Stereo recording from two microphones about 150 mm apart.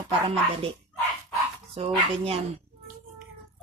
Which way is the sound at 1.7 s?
45° right (ahead or behind).